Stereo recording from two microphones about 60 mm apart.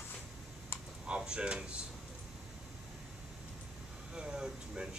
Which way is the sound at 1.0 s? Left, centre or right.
Centre.